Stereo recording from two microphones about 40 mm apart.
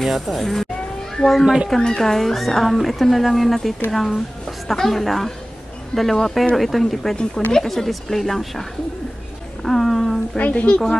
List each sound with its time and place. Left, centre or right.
0.0 s a child's voice: centre
9.6 s a sound: centre
10.3 s a woman's voice: left